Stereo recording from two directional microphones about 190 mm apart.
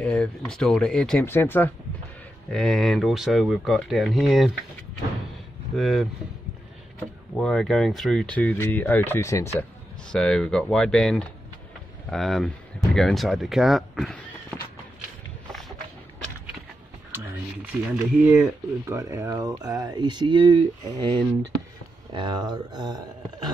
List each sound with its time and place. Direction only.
0.0 s speech: 5° left (ahead or behind)
5.8 s speech: centre (ahead or behind)
7.3 s speech: 5° left (ahead or behind)
10.1 s speech: 5° left (ahead or behind)
17.1 s speech: 15° right (ahead or behind)